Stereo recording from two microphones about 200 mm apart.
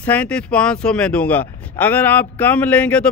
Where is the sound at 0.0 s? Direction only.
5° left (ahead or behind).